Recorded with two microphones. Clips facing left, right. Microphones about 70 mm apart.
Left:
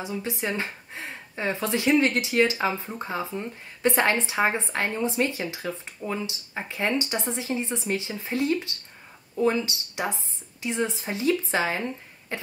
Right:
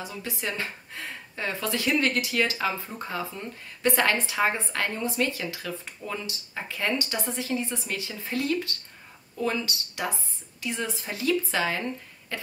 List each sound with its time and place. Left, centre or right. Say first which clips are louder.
0.0 s speech: left 4 dB; left
12.3 s cough: left 3 dB; left